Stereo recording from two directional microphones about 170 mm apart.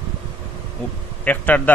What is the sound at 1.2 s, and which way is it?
Speech, 10° left (ahead or behind).